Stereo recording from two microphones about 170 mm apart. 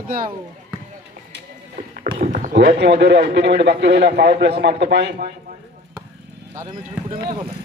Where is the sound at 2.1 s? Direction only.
45° right (ahead or behind).